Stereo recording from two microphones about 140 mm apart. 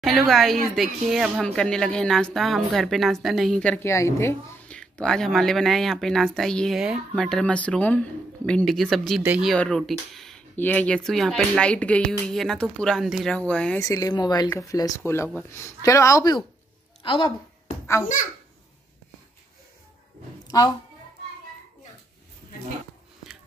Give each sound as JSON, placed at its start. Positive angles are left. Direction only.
{"t": 0.0, "sound": "speech", "side_deg": 0}
{"t": 3.8, "sound": "speech", "side_deg": 20}
{"t": 4.6, "sound": "speech", "side_deg": 5}
{"t": 9.2, "sound": "speech", "side_deg": -10}
{"t": 9.5, "sound": "speech", "side_deg": 5}
{"t": 10.5, "sound": "speech", "side_deg": 10}
{"t": 13.7, "sound": "speech", "side_deg": 25}
{"t": 17.0, "sound": "music", "side_deg": 40}